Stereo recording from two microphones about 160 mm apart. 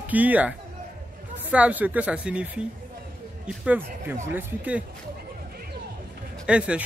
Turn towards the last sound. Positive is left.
turn(degrees=-5)  # may be behind; listen again after turning